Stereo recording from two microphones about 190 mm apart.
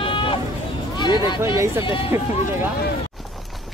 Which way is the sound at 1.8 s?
25° left (ahead or behind).